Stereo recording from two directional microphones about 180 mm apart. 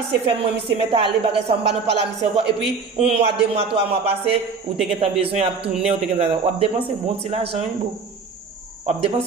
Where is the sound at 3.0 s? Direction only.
35° right (ahead or behind).